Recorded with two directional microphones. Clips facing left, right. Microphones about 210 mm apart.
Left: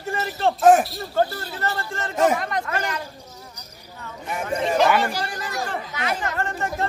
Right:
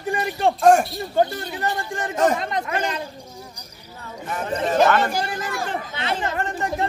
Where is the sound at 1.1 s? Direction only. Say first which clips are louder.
Right 2 dB; 15° right (ahead or behind).